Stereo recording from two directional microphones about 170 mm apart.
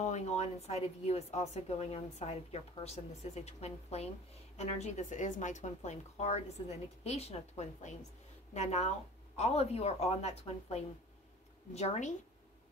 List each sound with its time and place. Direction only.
0.0 s a woman's voice: 40° left (ahead or behind)